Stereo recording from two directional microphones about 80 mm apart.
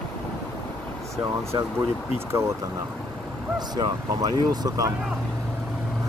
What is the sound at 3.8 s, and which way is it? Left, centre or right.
Speech, right.